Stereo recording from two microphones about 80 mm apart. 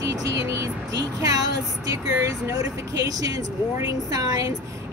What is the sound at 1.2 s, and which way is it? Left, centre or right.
Speech, right.